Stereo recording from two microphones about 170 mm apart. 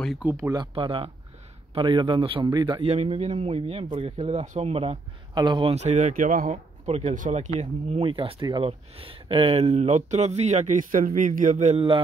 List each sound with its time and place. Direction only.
0.2 s speech: 15° right (ahead or behind); by 11.8 s 45° right (ahead or behind)